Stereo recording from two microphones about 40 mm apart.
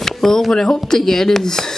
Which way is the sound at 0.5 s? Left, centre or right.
Centre.